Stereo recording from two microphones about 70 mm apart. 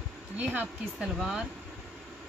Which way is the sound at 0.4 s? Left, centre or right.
Right.